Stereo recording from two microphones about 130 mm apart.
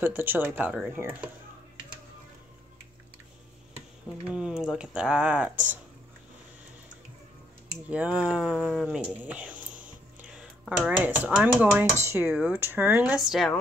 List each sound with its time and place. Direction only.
0.0 s speech: 15° right (ahead or behind)
4.3 s speech: 5° right (ahead or behind)
7.9 s speech: 10° right (ahead or behind)
11.5 s dishes: 20° right (ahead or behind)
12.3 s speech: 10° right (ahead or behind)